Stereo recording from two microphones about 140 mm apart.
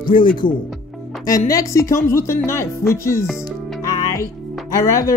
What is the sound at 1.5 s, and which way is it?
Speech, 20° left (ahead or behind).